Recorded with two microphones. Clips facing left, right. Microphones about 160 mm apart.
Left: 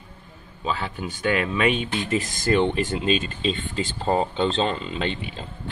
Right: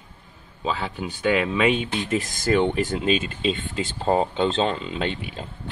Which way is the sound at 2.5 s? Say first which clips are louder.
Even; 5° right (ahead or behind).